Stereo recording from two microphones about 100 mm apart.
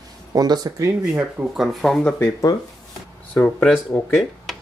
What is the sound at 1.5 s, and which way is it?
Speech, centre (ahead or behind).